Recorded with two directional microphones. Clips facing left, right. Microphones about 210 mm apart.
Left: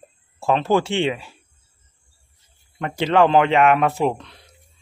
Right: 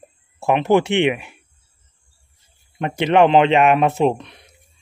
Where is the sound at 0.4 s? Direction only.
15° right (ahead or behind).